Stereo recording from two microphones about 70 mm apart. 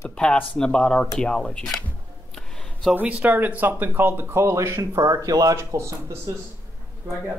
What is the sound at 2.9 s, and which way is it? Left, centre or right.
Speech, right.